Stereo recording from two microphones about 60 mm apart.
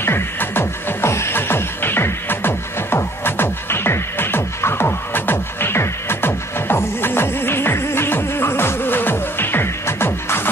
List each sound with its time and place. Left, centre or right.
0.0 s music: left